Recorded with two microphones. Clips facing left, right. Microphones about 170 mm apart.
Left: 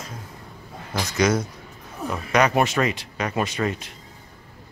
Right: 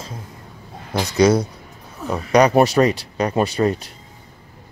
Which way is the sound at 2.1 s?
35° right (ahead or behind).